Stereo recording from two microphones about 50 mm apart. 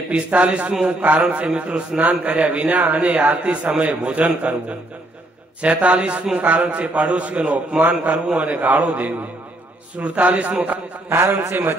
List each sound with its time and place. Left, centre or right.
0.1 s a man's voice: right
3.7 s a man's voice: right
11.1 s a man's voice: right